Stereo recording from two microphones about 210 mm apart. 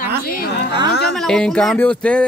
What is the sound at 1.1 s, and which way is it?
Speech, 5° left (ahead or behind).